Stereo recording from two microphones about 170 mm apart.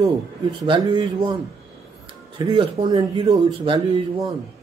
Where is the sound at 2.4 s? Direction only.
20° right (ahead or behind).